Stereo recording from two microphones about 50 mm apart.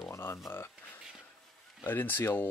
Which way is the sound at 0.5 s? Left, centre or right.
Left.